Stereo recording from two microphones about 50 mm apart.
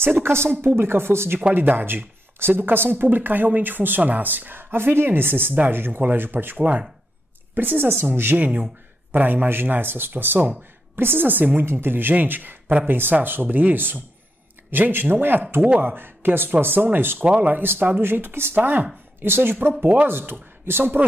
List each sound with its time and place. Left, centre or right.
0.0 s speech: right
1.5 s speech: right
11.6 s speech: right
18.0 s speech: right
18.5 s speech: right
19.2 s speech: right